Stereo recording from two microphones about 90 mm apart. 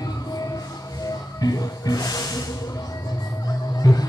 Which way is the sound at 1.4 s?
45° left (ahead or behind).